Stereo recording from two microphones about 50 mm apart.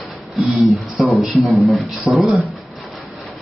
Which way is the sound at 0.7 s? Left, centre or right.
Centre.